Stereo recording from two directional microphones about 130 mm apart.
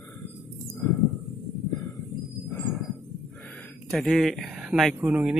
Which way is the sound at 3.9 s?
Centre (ahead or behind).